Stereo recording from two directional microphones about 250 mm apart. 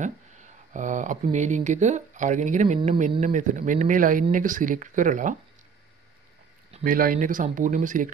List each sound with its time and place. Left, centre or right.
0.0 s speech: right
6.7 s speech: right